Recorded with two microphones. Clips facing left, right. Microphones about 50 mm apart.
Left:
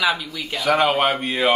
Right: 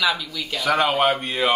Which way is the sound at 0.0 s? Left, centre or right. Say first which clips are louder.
Left 1 dB; centre.